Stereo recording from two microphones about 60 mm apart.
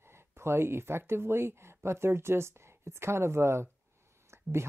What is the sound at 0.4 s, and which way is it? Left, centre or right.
Speech, right.